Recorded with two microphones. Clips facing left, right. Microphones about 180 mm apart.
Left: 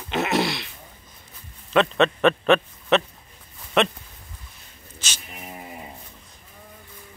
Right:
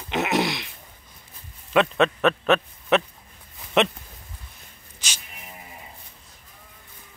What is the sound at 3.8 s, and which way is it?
Speech, 20° right (ahead or behind).